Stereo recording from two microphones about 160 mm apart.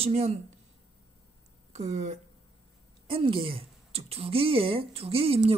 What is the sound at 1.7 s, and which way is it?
Speech, 45° right (ahead or behind).